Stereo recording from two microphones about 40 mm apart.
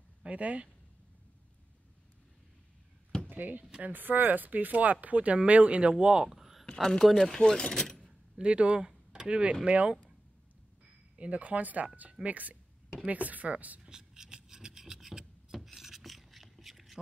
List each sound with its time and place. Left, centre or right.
0.2 s speech: right
3.3 s speech: right
6.2 s a sound: centre
6.6 s speech: centre
7.3 s speech: centre
8.4 s speech: right
8.8 s a sound: centre
9.3 s speech: right
11.1 s speech: right
13.8 s filing: centre